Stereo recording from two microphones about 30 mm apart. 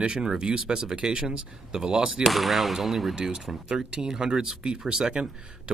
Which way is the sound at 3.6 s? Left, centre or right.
Right.